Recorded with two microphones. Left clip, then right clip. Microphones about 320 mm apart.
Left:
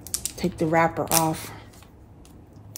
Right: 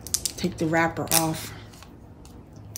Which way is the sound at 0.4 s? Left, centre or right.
Centre.